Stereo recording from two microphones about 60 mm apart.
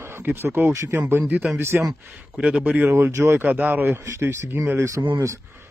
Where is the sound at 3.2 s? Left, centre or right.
Right.